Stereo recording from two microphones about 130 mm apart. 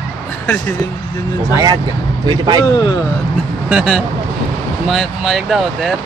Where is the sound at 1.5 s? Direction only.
30° right (ahead or behind).